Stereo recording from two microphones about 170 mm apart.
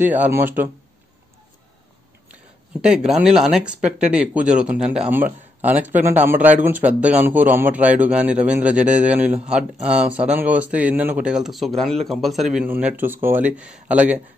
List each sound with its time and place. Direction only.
0.0 s a man's voice: 10° right (ahead or behind)
2.8 s a man's voice: 5° right (ahead or behind)